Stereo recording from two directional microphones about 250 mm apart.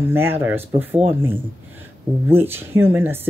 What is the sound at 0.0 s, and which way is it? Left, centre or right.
Speech, centre.